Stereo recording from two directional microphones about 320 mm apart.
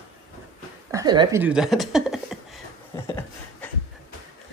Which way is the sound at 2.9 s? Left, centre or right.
Centre.